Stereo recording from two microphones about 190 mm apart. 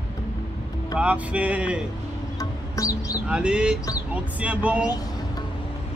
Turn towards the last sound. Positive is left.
turn(degrees=-5)  # may be behind; listen again after turning